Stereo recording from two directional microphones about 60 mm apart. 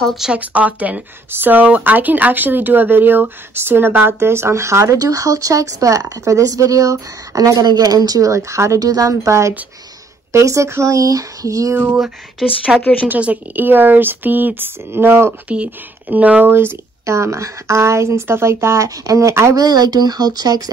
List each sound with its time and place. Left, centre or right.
0.3 s speech: right
4.2 s speech: right
4.9 s speech: right
8.7 s speech: right
9.1 s speech: right
11.7 s speech: right
12.4 s speech: centre
12.8 s a woman's voice: left
13.1 s speech: right
15.4 s speech: right
16.4 s speech: right
19.0 s speech: right
19.5 s speech: right